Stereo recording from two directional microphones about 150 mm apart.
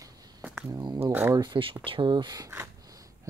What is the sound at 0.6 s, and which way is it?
Speech, 25° right (ahead or behind).